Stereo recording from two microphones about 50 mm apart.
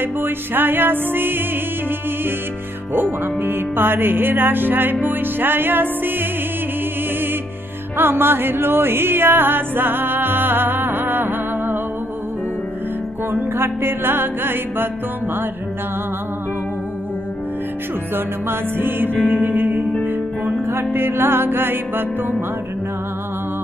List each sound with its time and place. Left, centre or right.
0.0 s speech: right
2.9 s speech: right
8.0 s music: right
13.3 s speech: right
18.1 s music: right
20.6 s speech: right